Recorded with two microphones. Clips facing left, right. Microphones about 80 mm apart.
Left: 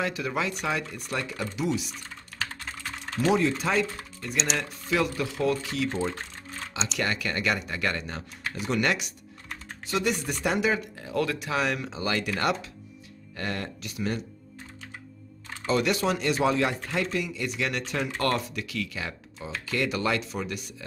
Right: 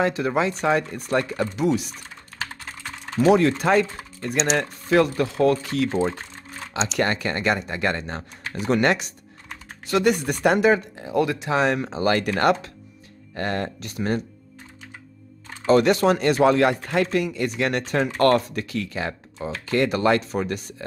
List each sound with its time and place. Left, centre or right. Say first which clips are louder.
0.0 s speech: right 7 dB; right
3.3 s a man's voice: right 7 dB; right
7.0 s speech: right 5 dB; right
9.8 s a man's voice: right 7 dB; right
11.0 s a man's voice: right 6 dB; right
15.6 s a man's voice: right 8 dB; right